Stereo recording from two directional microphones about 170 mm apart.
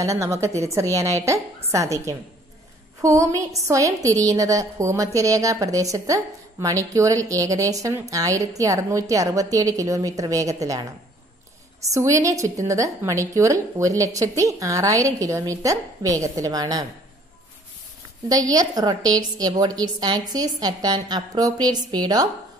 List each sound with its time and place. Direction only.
0.0 s a woman's voice: 20° right (ahead or behind)
11.9 s a woman's voice: 20° right (ahead or behind)
18.3 s a woman's voice: 20° right (ahead or behind)